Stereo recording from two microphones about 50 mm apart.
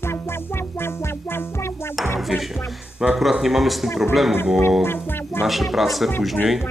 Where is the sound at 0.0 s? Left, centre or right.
Left.